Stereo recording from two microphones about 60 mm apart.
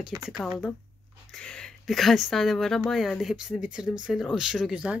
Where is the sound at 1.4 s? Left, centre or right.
Centre.